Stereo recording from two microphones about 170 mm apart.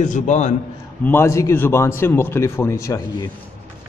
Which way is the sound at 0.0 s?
45° left (ahead or behind).